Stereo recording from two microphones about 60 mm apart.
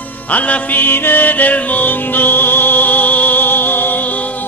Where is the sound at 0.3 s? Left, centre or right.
Left.